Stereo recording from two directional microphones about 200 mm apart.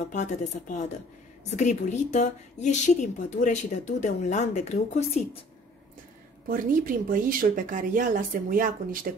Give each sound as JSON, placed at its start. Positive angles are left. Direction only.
{"t": 0.1, "sound": "a woman's voice", "side_deg": 35}
{"t": 6.5, "sound": "speech", "side_deg": -45}